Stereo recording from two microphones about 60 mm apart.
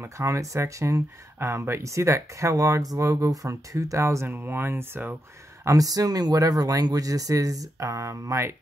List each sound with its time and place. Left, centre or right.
0.0 s speech: right
5.7 s speech: right